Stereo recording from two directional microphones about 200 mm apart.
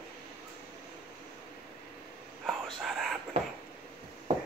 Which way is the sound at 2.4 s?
Centre (ahead or behind).